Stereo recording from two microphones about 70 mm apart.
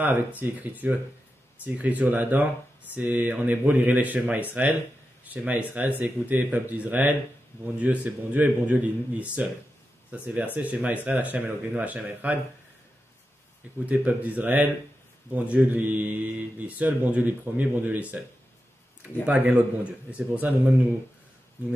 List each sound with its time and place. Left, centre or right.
0.0 s speech: right
13.8 s speech: right
19.2 s speech: centre